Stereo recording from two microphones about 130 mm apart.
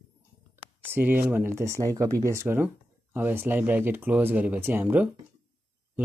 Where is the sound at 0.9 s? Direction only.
15° right (ahead or behind).